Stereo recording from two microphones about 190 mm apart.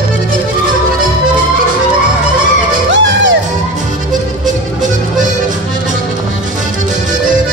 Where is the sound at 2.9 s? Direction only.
75° right (ahead or behind).